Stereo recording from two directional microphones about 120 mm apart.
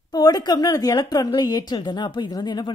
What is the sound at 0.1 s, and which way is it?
A woman's voice, 35° left (ahead or behind).